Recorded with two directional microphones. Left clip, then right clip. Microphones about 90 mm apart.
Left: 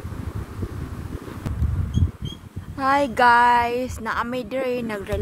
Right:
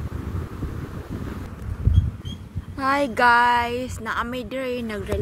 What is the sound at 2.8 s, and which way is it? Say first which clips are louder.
A woman's voice: left 2 dB; 10° left (ahead or behind).